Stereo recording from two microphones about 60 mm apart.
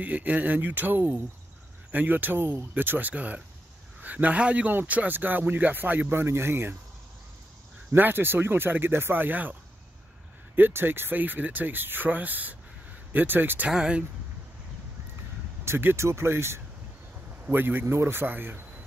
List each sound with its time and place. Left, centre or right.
0.0 s a man's voice: right
6.1 s speech: right
7.9 s speech: right
13.7 s speech: centre
15.6 s speech: right